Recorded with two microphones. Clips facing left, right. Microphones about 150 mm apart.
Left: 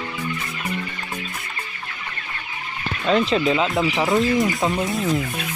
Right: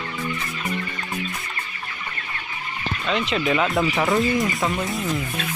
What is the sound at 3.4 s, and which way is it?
Speech, 20° left (ahead or behind).